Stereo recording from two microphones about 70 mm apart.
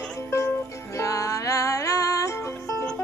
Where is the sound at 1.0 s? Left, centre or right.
Left.